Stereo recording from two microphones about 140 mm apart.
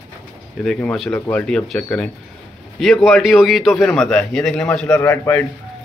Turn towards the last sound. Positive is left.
turn(degrees=15)  # may be behind; listen again after turning